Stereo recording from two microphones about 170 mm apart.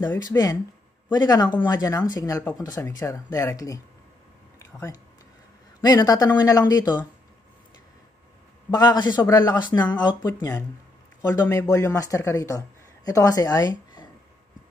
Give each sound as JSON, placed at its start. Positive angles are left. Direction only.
{"t": 0.1, "sound": "speech", "side_deg": 15}
{"t": 4.6, "sound": "a sound", "side_deg": 15}
{"t": 5.8, "sound": "speech", "side_deg": 20}
{"t": 8.6, "sound": "speech", "side_deg": 25}